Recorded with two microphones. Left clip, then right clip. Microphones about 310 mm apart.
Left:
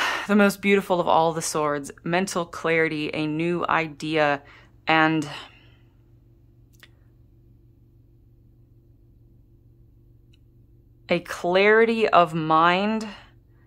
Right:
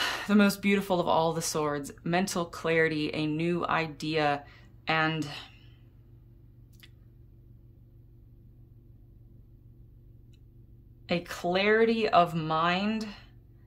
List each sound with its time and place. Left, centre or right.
0.0 s speech: centre
11.1 s speech: centre